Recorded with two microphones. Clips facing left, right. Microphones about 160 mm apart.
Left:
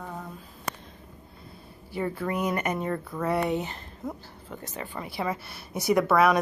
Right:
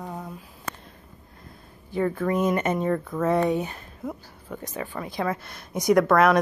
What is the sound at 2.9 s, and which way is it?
Speech, 5° left (ahead or behind).